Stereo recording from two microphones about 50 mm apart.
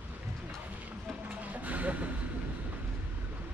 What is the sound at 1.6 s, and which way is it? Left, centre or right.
Vehicle, right.